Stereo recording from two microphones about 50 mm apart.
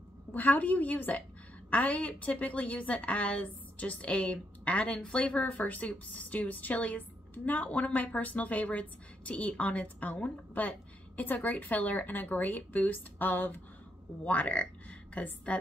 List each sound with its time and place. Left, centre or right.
0.3 s a woman's voice: left